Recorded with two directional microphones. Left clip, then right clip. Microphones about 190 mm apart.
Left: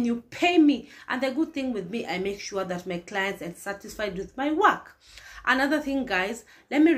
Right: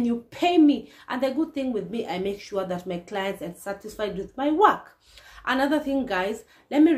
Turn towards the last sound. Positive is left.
turn(degrees=0)  # may be behind; listen again after turning